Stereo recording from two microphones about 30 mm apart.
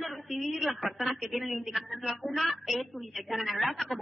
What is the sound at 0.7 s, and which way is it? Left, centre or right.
A woman's voice, centre.